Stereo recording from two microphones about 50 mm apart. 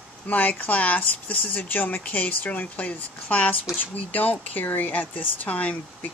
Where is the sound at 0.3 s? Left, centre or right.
Left.